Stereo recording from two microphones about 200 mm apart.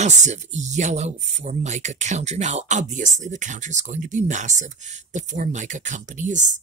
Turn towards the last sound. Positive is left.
turn(degrees=-40)  # may be behind; listen again after turning